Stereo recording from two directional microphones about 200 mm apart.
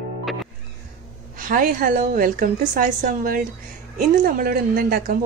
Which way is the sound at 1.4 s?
45° right (ahead or behind).